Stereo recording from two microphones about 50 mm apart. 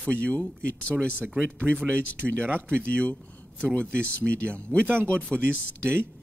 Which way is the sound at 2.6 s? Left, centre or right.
Left.